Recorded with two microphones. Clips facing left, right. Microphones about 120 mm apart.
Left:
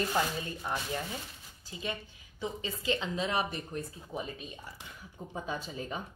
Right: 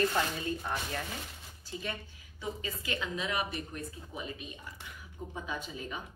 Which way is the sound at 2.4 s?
25° left (ahead or behind).